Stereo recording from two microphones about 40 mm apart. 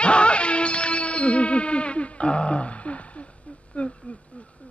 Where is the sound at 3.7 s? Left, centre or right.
Left.